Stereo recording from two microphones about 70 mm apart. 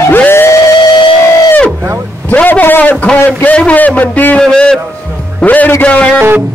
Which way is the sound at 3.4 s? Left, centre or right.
Centre.